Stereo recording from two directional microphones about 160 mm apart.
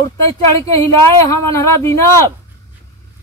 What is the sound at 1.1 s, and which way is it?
Speech, 20° left (ahead or behind).